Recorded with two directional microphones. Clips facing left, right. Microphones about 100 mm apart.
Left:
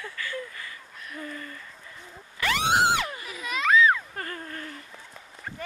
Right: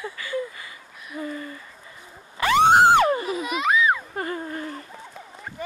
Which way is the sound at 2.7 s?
50° right (ahead or behind).